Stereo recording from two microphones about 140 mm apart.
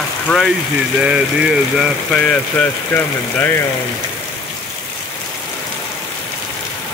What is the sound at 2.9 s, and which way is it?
Speech, 15° left (ahead or behind).